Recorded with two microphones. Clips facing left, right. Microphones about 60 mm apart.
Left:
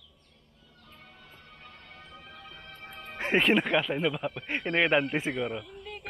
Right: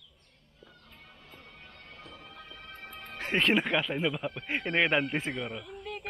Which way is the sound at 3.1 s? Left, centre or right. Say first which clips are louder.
Left 5 dB; left.